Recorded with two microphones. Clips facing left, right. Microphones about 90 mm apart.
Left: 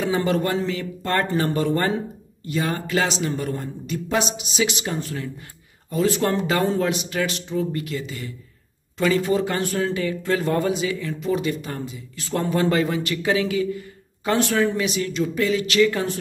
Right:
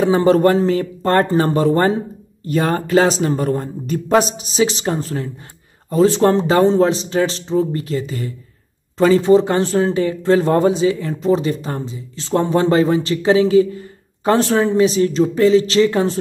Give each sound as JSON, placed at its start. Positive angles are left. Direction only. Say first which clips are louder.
{"t": 0.0, "sound": "speech", "louder": "right 9 dB", "side_deg": -35}
{"t": 2.4, "sound": "speech", "louder": "right 7 dB", "side_deg": -45}